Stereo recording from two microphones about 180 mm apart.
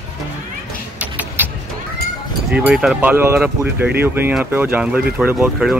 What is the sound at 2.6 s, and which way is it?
Speech, 5° right (ahead or behind).